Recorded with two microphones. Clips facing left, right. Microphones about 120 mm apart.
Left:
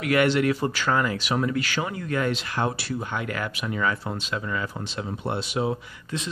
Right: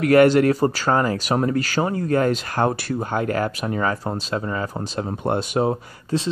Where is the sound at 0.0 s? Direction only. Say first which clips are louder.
Right 7 dB; 40° right (ahead or behind).